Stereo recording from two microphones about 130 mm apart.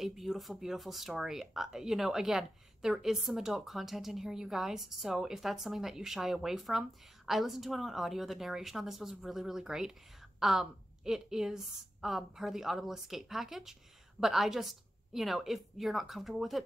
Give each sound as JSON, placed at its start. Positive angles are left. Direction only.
{"t": 0.0, "sound": "speech", "side_deg": 0}